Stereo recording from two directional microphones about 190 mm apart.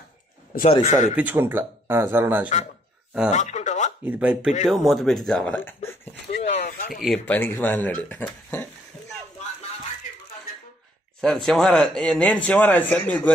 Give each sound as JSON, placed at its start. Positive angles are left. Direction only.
{"t": 0.7, "sound": "a man's voice", "side_deg": 35}
{"t": 1.1, "sound": "speech", "side_deg": -10}
{"t": 3.3, "sound": "a sound", "side_deg": 40}
{"t": 4.0, "sound": "speech", "side_deg": -10}
{"t": 6.4, "sound": "a sound", "side_deg": 35}
{"t": 6.9, "sound": "speech", "side_deg": 0}
{"t": 11.1, "sound": "speech", "side_deg": 0}